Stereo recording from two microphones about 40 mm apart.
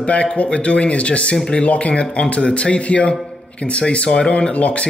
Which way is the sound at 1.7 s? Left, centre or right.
Left.